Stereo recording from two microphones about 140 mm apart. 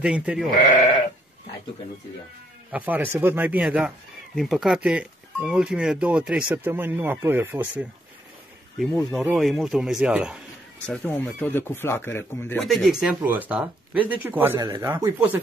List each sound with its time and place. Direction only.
0.0 s speech: 10° right (ahead or behind)
0.6 s sheep: 60° left (ahead or behind)
2.7 s speech: 10° right (ahead or behind)
9.2 s speech: centre (ahead or behind)
10.9 s speech: 10° left (ahead or behind)
12.5 s speech: centre (ahead or behind); by 15.3 s 20° right (ahead or behind)